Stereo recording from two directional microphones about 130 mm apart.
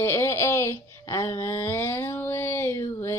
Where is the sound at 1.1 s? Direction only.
20° left (ahead or behind).